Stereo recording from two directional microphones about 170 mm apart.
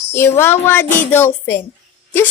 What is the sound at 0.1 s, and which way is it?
Speech, 15° left (ahead or behind).